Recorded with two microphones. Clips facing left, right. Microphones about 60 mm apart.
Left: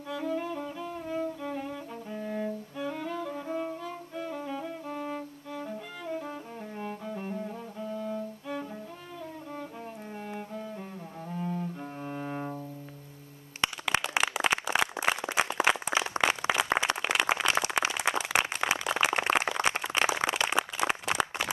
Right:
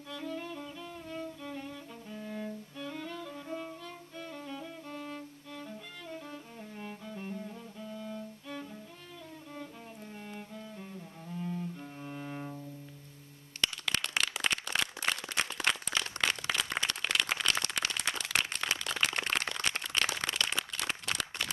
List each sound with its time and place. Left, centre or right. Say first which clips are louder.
0.1 s music: left 7 dB; centre
6.8 s cello: left 6 dB; centre
11.2 s cello: left 4 dB; left
13.6 s a sound: left 5 dB; centre